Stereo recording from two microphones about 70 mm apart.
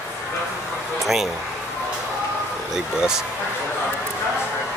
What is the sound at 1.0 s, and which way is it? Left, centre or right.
Speech, centre.